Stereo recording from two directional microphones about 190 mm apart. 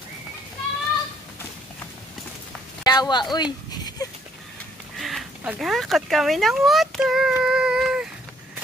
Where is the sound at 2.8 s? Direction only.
20° left (ahead or behind).